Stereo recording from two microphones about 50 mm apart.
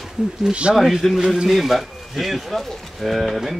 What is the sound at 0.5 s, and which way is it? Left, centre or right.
Speech, right.